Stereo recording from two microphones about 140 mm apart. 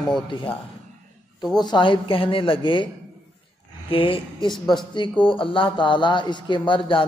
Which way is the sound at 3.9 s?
40° left (ahead or behind).